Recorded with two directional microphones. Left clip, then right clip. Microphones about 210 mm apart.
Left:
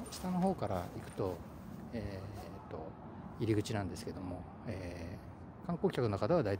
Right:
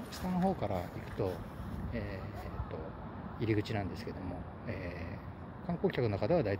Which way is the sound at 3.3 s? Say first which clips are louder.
Right 1 dB; 30° left (ahead or behind).